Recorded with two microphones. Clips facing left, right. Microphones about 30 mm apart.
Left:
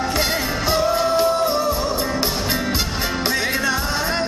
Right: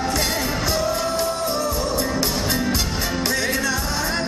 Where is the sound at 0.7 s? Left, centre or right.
Centre.